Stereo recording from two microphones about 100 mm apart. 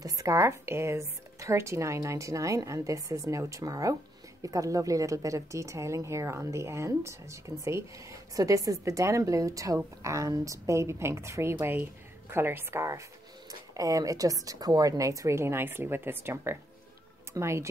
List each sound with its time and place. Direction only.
0.0 s a woman's voice: 35° right (ahead or behind)